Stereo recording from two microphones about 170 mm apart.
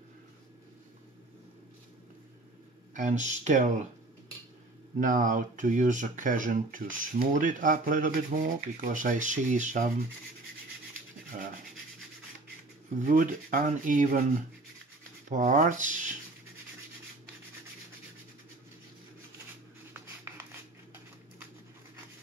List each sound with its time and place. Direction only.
2.9 s speech: 45° right (ahead or behind)
4.9 s speech: 50° right (ahead or behind)
11.3 s speech: 55° right (ahead or behind)
13.0 s speech: 50° right (ahead or behind)
15.2 s rub: 50° right (ahead or behind)